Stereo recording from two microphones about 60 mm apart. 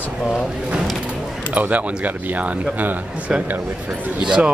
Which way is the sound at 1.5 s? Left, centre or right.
Right.